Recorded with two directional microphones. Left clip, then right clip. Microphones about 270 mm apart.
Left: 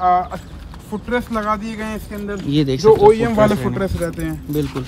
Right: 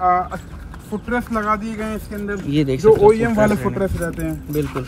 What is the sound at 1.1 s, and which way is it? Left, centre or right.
Speech, centre.